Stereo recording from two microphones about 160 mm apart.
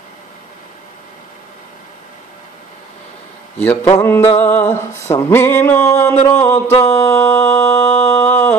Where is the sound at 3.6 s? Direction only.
10° left (ahead or behind).